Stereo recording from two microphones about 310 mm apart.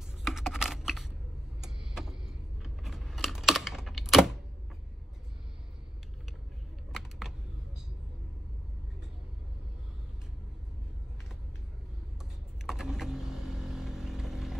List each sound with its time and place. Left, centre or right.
0.2 s computer keyboard: centre
6.9 s a sound: centre
12.6 s vehicle: centre